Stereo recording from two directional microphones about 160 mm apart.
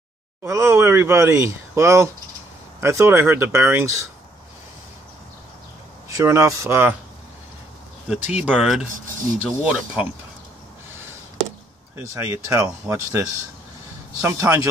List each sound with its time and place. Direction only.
0.4 s speech: 15° right (ahead or behind)
6.0 s speech: 20° right (ahead or behind)
8.1 s speech: 5° right (ahead or behind)
12.0 s speech: 15° right (ahead or behind)
14.2 s speech: 20° right (ahead or behind)